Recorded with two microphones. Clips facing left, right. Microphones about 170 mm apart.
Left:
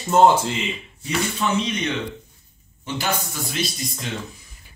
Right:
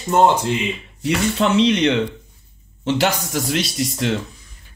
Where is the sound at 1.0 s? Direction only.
75° right (ahead or behind).